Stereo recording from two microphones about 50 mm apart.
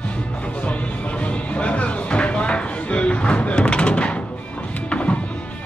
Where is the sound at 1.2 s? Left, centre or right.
Left.